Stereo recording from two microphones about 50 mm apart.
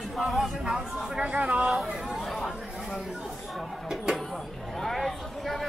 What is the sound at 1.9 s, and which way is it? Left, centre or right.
Speech, centre.